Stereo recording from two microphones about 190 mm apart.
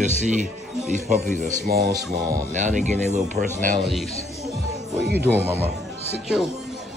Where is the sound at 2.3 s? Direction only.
40° right (ahead or behind).